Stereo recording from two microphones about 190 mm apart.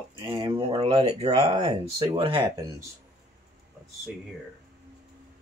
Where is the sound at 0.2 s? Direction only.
25° right (ahead or behind).